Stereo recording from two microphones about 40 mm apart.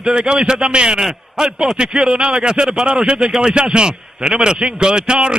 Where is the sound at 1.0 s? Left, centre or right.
Centre.